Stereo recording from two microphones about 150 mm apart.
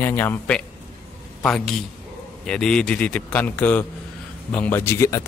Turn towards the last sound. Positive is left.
turn(degrees=20)  # may be behind; listen again after turning